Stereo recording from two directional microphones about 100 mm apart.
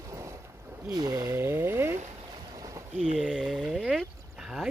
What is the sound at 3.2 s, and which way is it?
Speech, 5° right (ahead or behind).